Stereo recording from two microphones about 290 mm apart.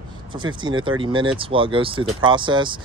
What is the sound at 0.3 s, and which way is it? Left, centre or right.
Speech, centre.